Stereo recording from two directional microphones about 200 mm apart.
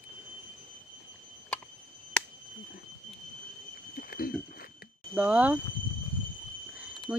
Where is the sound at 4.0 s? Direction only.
45° left (ahead or behind).